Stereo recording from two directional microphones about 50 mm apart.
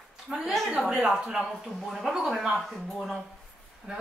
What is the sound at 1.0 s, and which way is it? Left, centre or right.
A woman's voice, centre.